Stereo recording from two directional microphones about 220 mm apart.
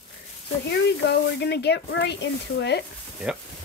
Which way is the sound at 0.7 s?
50° left (ahead or behind).